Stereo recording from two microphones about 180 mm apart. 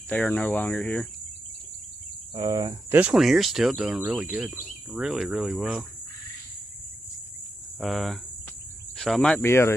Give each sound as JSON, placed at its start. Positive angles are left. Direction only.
{"t": 0.1, "sound": "speech", "side_deg": 10}
{"t": 2.3, "sound": "speech", "side_deg": -25}
{"t": 3.0, "sound": "speech", "side_deg": -5}
{"t": 7.8, "sound": "speech", "side_deg": 5}